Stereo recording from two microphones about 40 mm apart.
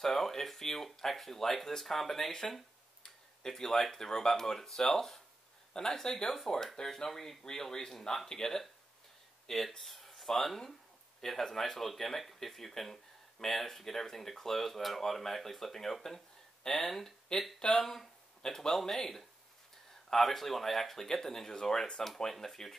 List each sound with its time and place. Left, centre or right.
0.0 s speech: centre
16.6 s speech: centre
16.9 s speech: centre
22.0 s speech: centre